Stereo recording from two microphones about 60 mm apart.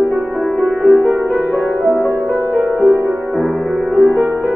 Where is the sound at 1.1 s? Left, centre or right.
Right.